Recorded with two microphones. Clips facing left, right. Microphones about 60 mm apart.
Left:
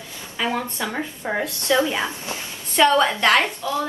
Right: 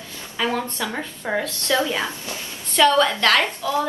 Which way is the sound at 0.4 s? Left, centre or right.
Centre.